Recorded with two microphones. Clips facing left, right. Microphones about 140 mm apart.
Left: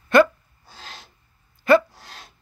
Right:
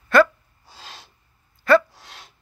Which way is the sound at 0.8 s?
5° right (ahead or behind).